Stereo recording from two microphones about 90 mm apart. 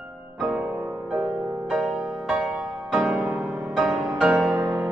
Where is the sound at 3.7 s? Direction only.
Centre (ahead or behind).